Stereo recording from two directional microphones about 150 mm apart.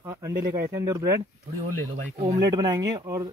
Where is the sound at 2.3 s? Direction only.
25° right (ahead or behind).